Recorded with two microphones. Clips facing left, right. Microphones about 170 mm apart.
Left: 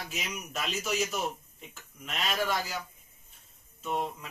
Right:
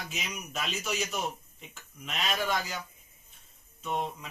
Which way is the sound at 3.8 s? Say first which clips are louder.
Even; 5° left (ahead or behind).